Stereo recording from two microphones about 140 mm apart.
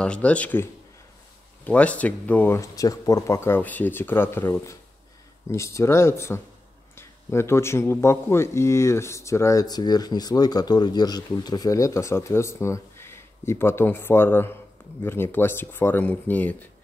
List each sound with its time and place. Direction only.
0.0 s speech: 10° left (ahead or behind)